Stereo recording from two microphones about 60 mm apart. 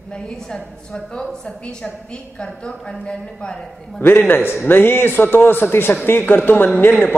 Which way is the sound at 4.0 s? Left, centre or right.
Left.